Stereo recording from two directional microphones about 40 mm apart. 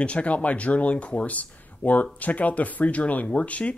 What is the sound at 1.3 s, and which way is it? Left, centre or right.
Speech, left.